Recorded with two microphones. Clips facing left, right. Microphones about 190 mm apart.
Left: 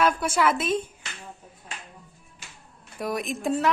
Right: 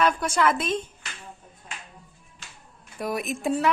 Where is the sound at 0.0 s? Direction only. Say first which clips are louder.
Even; 5° left (ahead or behind).